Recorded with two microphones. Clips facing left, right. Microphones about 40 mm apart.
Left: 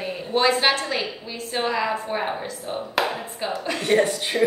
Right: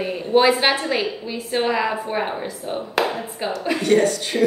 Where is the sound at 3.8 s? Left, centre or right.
Centre.